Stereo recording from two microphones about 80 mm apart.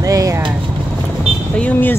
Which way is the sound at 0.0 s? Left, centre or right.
Right.